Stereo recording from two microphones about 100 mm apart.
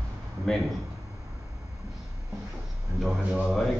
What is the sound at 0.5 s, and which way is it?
Speech, 5° left (ahead or behind).